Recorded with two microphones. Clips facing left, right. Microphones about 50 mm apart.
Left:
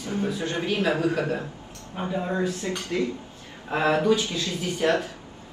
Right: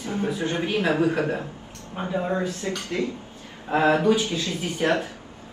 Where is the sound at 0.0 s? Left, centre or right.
Right.